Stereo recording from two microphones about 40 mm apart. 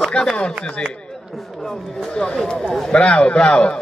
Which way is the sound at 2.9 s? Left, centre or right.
Left.